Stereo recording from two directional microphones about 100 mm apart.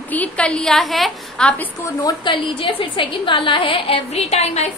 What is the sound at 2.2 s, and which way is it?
A woman's voice, 55° left (ahead or behind).